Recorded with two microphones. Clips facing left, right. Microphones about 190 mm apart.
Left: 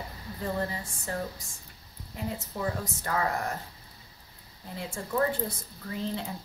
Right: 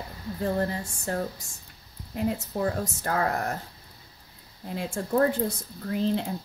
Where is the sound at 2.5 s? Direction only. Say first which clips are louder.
Right 5 dB; 45° right (ahead or behind).